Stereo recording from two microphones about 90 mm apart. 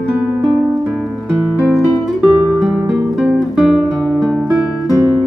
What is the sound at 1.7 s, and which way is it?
Music, centre (ahead or behind).